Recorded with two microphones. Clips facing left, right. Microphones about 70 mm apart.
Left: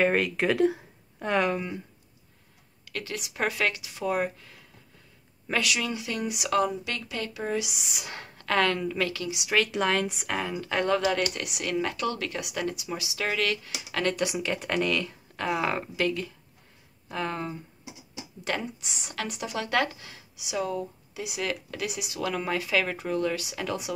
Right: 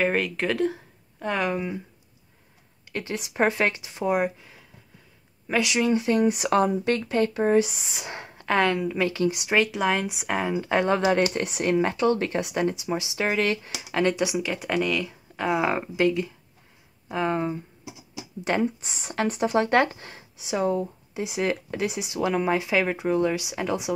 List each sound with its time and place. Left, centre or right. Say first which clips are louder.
0.0 s speech: even; centre
2.8 s speech: right 4 dB; right
4.1 s speech: right 4 dB; centre
5.6 s speech: right 7 dB; right
9.7 s speech: right 1 dB; centre; by 14.0 s right
14.0 s speech: right 3 dB; centre
18.4 s speech: right 7 dB; right